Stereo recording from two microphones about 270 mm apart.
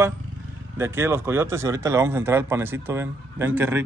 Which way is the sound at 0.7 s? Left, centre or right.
Centre.